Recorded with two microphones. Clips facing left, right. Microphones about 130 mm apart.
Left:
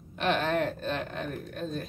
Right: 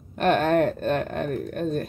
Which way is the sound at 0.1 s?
50° right (ahead or behind).